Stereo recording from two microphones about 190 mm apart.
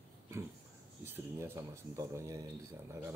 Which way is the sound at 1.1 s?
10° right (ahead or behind).